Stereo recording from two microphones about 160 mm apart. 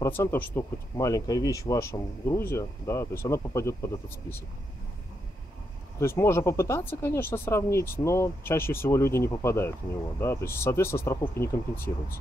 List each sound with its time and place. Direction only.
0.0 s speech: 15° left (ahead or behind)
5.9 s speech: 15° left (ahead or behind)